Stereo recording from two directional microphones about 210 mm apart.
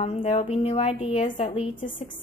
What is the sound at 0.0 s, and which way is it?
A woman's voice, 35° left (ahead or behind).